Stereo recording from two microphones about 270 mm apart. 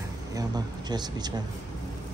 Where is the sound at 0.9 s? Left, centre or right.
Centre.